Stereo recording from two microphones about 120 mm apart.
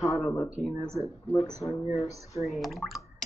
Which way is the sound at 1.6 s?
25° left (ahead or behind).